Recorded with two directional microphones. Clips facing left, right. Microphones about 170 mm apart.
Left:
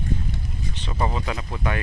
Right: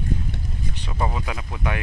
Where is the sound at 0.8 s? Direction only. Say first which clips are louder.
Left 1 dB; 5° right (ahead or behind).